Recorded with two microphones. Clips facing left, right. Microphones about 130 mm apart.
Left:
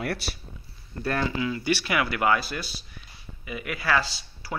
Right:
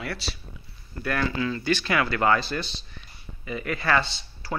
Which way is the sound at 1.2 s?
15° left (ahead or behind).